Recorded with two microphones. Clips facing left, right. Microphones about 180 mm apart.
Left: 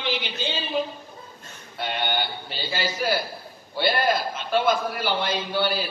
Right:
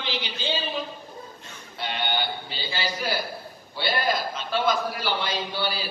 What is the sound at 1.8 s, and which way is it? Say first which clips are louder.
A man's voice: left 2 dB; 50° left (ahead or behind).